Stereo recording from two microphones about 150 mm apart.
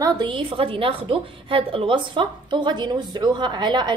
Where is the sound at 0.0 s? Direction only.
35° right (ahead or behind).